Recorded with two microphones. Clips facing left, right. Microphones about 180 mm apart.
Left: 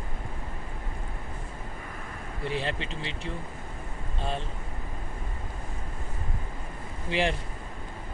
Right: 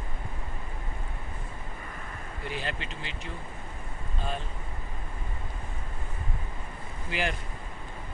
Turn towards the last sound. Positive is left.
turn(degrees=30)  # may be behind; listen again after turning